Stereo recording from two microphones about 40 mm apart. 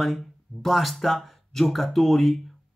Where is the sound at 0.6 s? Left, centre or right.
Centre.